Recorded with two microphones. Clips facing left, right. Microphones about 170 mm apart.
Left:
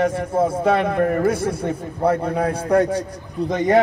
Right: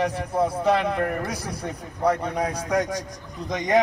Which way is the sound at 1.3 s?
25° left (ahead or behind).